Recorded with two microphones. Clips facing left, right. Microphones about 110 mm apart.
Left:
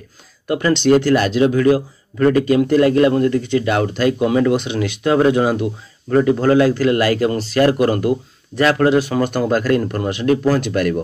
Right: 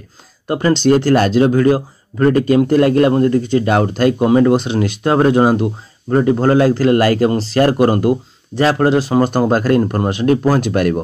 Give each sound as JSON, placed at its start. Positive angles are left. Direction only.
{"t": 0.5, "sound": "speech", "side_deg": -35}